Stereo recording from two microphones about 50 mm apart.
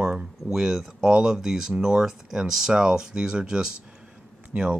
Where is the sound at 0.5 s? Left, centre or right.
Centre.